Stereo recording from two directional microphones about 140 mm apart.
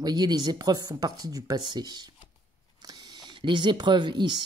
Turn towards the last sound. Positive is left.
turn(degrees=-35)  # may be behind; listen again after turning